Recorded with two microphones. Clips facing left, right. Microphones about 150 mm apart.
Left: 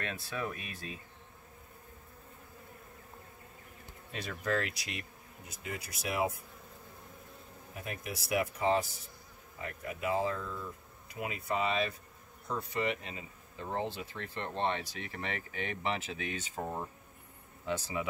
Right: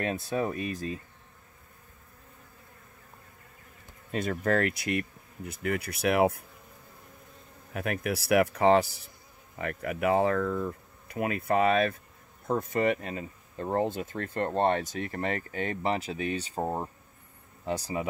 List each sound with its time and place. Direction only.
0.1 s speech: 40° right (ahead or behind)
4.1 s speech: 50° right (ahead or behind)
7.7 s speech: 70° right (ahead or behind); by 18.0 s 40° right (ahead or behind)